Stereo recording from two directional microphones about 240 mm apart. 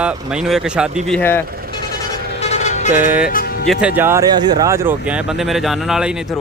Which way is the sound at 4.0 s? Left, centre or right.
Centre.